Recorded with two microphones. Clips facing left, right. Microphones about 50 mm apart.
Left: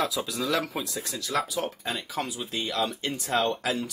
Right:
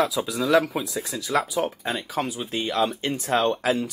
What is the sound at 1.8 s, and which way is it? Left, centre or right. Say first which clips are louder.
Speech: right 4 dB; right.